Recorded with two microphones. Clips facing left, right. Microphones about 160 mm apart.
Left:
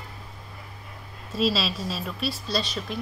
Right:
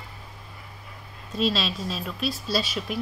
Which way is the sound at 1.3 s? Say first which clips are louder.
Left 1 dB; centre (ahead or behind).